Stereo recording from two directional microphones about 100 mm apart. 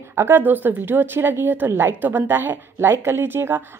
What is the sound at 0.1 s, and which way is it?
A woman's voice, 20° right (ahead or behind).